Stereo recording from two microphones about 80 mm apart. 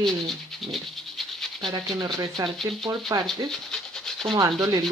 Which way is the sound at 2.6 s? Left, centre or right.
Centre.